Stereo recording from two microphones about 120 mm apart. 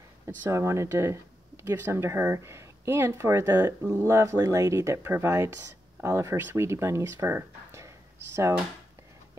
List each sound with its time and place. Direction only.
0.4 s speech: 25° right (ahead or behind)